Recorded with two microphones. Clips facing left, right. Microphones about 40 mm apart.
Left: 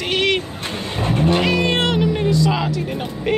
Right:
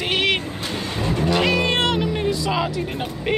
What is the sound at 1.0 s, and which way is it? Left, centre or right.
Vehicle, left.